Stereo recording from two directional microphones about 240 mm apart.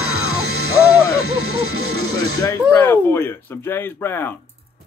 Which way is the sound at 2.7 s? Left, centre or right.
Centre.